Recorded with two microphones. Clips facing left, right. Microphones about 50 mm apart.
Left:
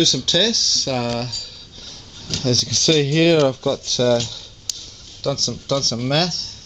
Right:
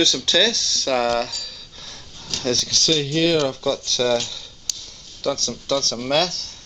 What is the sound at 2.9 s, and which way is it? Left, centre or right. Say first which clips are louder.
Speech: left 4 dB; left.